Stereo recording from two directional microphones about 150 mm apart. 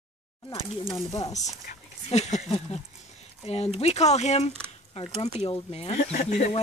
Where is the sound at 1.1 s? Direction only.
45° left (ahead or behind).